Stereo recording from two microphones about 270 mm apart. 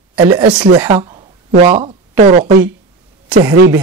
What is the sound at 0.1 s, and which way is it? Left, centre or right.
Speech, centre.